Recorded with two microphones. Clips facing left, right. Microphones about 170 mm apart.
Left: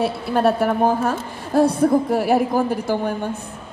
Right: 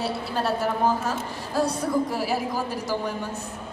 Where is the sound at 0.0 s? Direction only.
55° left (ahead or behind).